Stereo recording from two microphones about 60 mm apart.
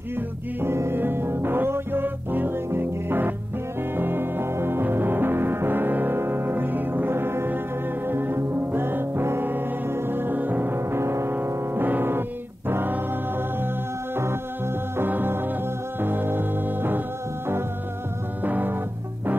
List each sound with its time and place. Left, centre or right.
0.6 s music: right
11.4 s music: right
15.0 s music: right
18.4 s music: right